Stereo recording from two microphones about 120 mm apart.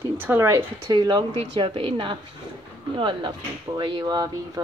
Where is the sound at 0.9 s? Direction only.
40° right (ahead or behind).